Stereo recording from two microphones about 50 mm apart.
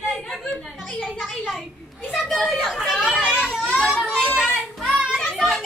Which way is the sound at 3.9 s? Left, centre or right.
Centre.